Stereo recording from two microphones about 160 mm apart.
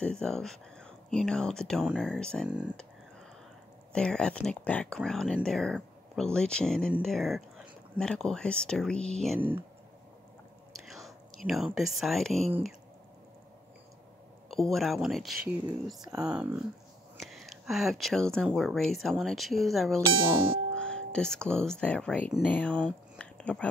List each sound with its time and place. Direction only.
0.0 s speech: 5° left (ahead or behind)
3.9 s speech: 5° left (ahead or behind)
9.4 s speech: 10° right (ahead or behind)
10.9 s speech: centre (ahead or behind)
14.5 s speech: centre (ahead or behind)
20.2 s music: 30° right (ahead or behind)
20.7 s speech: 5° left (ahead or behind)